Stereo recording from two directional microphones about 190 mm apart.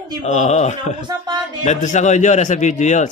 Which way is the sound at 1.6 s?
40° left (ahead or behind).